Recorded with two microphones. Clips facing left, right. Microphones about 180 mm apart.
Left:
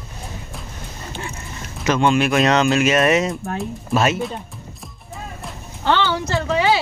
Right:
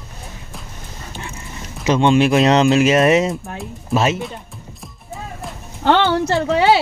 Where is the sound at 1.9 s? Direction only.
25° right (ahead or behind).